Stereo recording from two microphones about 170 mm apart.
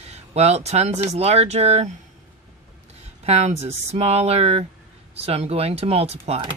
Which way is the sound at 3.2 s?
40° right (ahead or behind).